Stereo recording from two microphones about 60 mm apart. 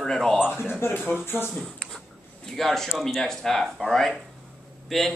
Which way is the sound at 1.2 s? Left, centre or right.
Left.